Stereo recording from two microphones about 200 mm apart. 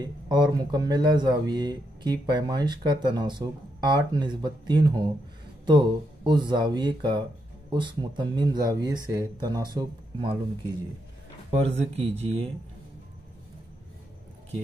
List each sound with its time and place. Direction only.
0.0 s speech: 20° right (ahead or behind)
11.5 s speech: 30° right (ahead or behind)